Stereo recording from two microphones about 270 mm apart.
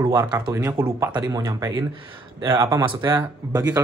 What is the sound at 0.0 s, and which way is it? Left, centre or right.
Speech, centre.